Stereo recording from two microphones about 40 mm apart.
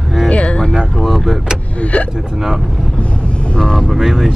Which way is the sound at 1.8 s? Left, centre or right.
Left.